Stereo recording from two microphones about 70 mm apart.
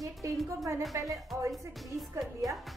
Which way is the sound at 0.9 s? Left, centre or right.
Right.